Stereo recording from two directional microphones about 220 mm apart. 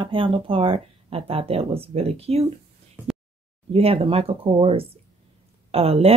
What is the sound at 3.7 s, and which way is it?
Speech, 25° right (ahead or behind).